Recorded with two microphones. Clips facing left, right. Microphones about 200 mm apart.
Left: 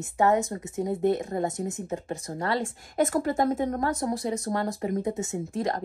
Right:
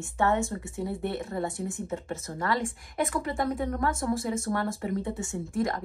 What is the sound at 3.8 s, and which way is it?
A woman's voice, 35° left (ahead or behind).